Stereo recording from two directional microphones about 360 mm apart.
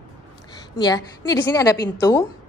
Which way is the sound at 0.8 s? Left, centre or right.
Centre.